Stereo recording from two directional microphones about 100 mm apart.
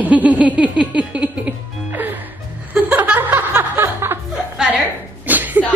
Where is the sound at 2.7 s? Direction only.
15° right (ahead or behind).